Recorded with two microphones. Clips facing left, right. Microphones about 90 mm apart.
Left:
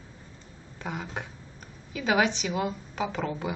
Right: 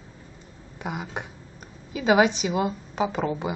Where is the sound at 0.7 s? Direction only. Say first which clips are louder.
Right 3 dB; 15° right (ahead or behind).